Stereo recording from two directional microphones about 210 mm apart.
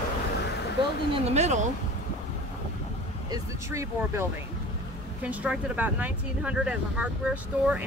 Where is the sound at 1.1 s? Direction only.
30° right (ahead or behind).